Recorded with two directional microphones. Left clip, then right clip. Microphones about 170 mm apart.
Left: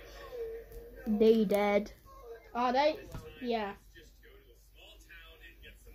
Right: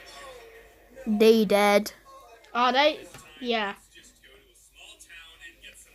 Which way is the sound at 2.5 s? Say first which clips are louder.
Right 7 dB; 45° right (ahead or behind).